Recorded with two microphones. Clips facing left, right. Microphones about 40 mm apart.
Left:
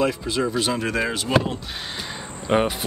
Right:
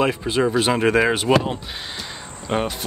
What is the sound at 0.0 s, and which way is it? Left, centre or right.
Speech, right.